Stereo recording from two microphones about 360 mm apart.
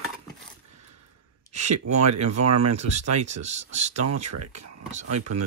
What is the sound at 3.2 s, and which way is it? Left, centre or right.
Speech, centre.